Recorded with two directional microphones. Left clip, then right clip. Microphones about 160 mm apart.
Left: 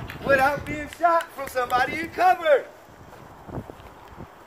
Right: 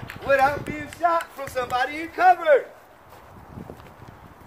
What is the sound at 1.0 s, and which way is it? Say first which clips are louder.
Speech: left 1 dB; 25° left (ahead or behind).